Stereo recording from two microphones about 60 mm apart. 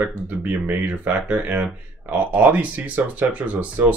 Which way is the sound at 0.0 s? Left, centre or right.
Right.